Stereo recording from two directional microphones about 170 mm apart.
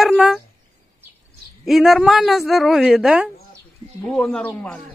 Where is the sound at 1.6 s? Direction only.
Centre (ahead or behind).